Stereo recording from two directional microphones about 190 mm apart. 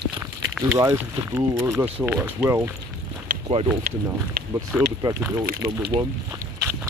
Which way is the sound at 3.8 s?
55° right (ahead or behind).